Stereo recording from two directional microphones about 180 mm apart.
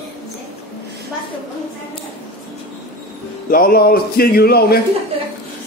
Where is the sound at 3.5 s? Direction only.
55° left (ahead or behind).